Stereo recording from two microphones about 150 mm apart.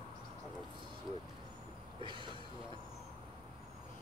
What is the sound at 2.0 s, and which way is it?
Speech, 35° right (ahead or behind).